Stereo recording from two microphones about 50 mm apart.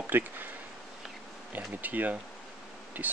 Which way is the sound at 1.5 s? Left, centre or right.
Right.